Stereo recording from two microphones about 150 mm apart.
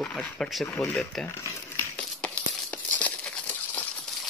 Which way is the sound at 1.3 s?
15° left (ahead or behind).